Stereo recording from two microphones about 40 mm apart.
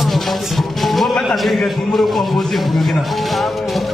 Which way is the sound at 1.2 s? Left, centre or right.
Centre.